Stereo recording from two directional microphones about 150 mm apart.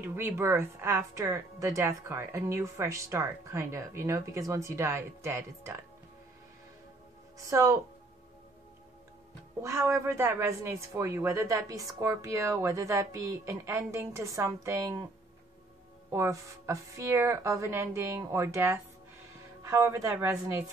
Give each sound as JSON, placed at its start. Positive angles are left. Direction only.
{"t": 0.0, "sound": "speech", "side_deg": -15}
{"t": 7.4, "sound": "speech", "side_deg": -20}
{"t": 9.6, "sound": "speech", "side_deg": -20}
{"t": 16.1, "sound": "speech", "side_deg": -20}